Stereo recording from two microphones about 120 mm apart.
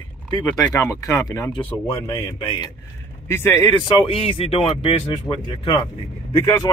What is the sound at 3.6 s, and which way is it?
Speech, 40° left (ahead or behind).